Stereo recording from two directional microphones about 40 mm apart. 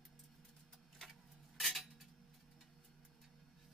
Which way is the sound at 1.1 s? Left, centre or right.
Centre.